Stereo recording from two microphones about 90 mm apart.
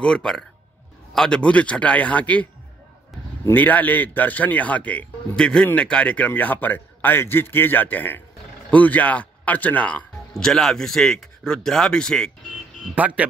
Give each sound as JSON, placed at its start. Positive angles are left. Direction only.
{"t": 0.0, "sound": "speech", "side_deg": 10}
{"t": 3.5, "sound": "a man's voice", "side_deg": 20}
{"t": 10.3, "sound": "speech", "side_deg": 5}
{"t": 12.9, "sound": "speech", "side_deg": -15}